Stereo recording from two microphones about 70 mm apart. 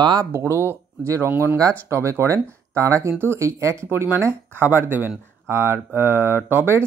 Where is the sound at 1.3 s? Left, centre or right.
Right.